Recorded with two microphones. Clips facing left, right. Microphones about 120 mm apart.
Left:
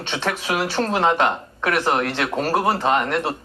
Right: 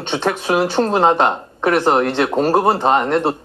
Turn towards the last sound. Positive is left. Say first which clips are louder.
# right 5 dB
turn(degrees=-30)  # may be behind; listen again after turning